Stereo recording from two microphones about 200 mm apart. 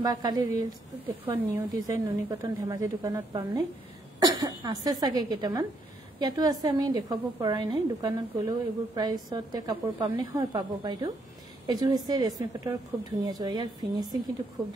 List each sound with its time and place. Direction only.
0.0 s a woman's voice: 20° right (ahead or behind)
4.2 s cough: 20° right (ahead or behind)
5.0 s a woman's voice: 20° right (ahead or behind)